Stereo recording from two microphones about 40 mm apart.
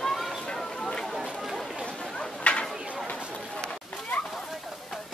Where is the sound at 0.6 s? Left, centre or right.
Centre.